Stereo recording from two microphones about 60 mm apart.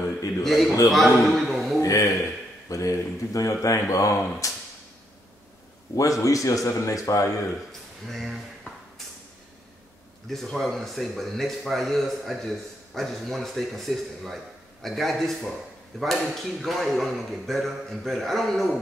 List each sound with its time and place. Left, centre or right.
0.4 s a man's voice: centre
1.8 s a sound: left
2.7 s a man's voice: left
5.9 s a man's voice: left
8.1 s speech: centre
10.3 s speech: centre